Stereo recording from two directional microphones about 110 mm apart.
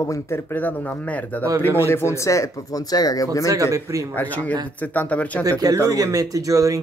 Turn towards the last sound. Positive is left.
turn(degrees=-30)  # may be behind; listen again after turning